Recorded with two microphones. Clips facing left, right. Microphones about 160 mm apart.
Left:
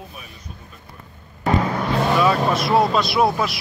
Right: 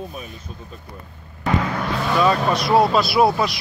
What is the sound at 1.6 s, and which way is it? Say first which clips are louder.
Vehicle: left 3 dB; 25° left (ahead or behind).